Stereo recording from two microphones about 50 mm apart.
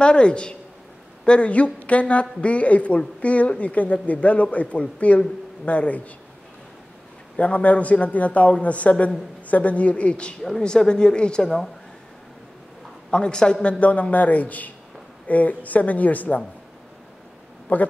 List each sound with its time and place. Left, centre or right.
0.0 s a man's voice: left
7.3 s a man's voice: left
10.4 s a woman's voice: centre
13.1 s a man's voice: centre
17.7 s speech: left